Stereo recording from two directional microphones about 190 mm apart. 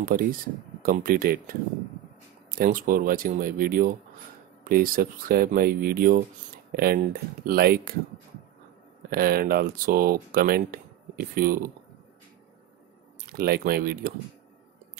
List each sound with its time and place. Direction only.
0.0 s speech: 50° right (ahead or behind)
9.1 s speech: 50° right (ahead or behind)
13.3 s speech: 50° right (ahead or behind)